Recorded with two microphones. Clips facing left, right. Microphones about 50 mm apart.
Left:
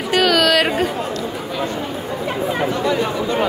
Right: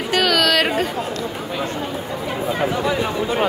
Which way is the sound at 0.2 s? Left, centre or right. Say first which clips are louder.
Left 2 dB; centre.